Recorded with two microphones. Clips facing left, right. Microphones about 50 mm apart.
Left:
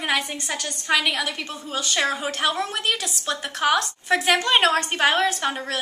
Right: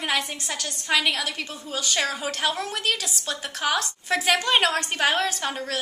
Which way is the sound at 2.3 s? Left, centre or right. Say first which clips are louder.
Left 2 dB; centre.